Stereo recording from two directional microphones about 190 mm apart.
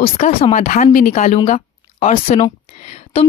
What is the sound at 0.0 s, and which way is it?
A woman's voice, 30° left (ahead or behind).